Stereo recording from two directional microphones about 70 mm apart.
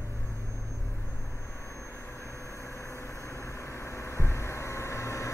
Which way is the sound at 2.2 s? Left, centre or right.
Left.